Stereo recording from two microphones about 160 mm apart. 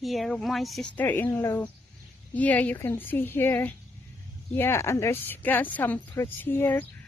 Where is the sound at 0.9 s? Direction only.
10° left (ahead or behind).